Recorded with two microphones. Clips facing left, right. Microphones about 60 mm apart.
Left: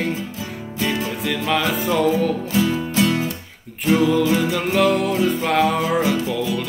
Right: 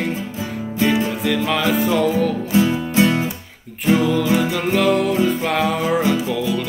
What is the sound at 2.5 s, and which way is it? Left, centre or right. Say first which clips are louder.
Music: right 3 dB; right.